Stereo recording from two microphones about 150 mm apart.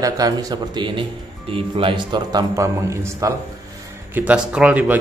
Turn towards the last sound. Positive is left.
turn(degrees=-10)  # may be behind; listen again after turning